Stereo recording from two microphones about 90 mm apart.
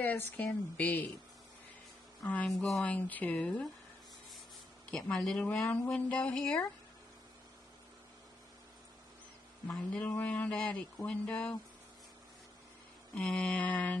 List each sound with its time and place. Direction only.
0.0 s speech: 20° left (ahead or behind)
2.4 s speech: 5° left (ahead or behind)
2.8 s speech: 15° left (ahead or behind)
5.0 s speech: 10° left (ahead or behind)
9.8 s speech: 15° left (ahead or behind)
13.1 s speech: 10° left (ahead or behind)